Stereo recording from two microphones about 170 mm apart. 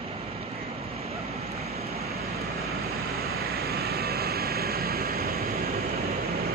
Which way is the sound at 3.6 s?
70° right (ahead or behind).